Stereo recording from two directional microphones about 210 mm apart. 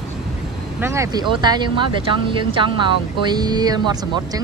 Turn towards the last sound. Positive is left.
turn(degrees=-20)  # may be behind; listen again after turning